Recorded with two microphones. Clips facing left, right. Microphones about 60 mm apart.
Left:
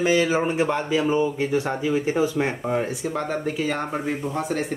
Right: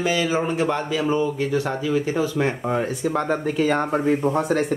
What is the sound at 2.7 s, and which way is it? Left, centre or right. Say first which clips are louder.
Speech: right 2 dB; centre.